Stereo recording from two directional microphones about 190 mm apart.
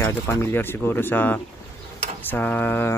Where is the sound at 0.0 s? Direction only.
10° left (ahead or behind).